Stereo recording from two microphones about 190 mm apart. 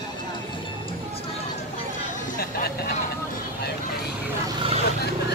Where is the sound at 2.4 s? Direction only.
55° left (ahead or behind).